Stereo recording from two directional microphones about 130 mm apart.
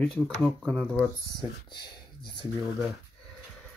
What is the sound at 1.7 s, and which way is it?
Speech, 35° left (ahead or behind).